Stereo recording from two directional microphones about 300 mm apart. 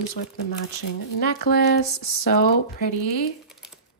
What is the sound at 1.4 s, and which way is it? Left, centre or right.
Speech, left.